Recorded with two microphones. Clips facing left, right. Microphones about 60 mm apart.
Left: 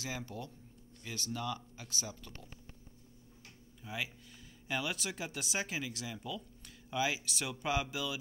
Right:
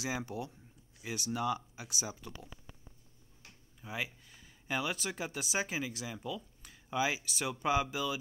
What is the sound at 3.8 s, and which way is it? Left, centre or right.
Speech, centre.